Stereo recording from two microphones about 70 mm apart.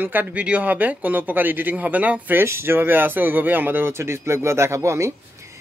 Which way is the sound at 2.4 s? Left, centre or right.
Right.